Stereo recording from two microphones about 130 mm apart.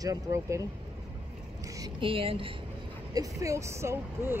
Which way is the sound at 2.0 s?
45° right (ahead or behind).